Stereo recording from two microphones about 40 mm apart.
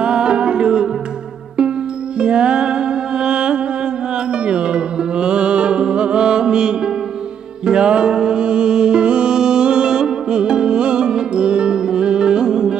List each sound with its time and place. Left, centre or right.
0.0 s music: right
2.1 s music: right